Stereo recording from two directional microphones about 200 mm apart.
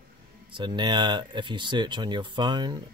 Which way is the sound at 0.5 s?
25° right (ahead or behind).